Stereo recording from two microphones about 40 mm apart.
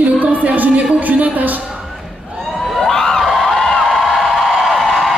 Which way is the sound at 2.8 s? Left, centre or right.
Centre.